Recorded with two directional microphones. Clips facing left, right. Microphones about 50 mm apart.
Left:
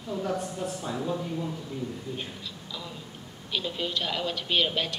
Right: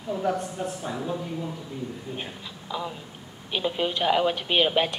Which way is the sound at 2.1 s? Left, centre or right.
Right.